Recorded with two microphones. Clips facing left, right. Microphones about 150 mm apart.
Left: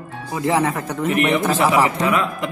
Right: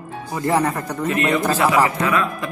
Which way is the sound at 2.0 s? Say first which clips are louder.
Left 1 dB; 20° left (ahead or behind).